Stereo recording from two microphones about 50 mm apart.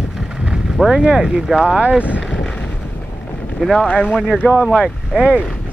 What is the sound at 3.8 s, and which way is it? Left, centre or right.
Speech, left.